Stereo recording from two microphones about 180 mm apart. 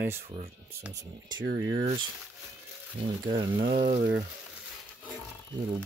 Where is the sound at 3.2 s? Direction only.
25° right (ahead or behind).